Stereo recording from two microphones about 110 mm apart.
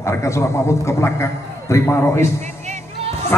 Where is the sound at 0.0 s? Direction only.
25° left (ahead or behind).